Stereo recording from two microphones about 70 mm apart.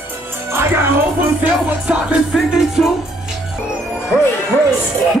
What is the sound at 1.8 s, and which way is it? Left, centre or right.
Music, centre.